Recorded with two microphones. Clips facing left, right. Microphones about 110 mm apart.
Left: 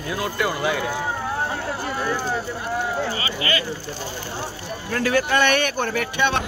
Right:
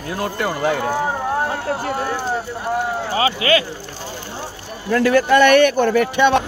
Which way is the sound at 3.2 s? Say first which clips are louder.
Right 8 dB; 90° right.